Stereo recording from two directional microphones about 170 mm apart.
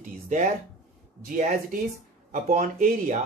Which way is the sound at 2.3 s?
50° right (ahead or behind).